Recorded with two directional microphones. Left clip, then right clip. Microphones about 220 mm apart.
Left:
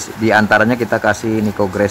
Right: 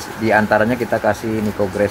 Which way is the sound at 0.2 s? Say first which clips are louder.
Left 3 dB; 20° left (ahead or behind).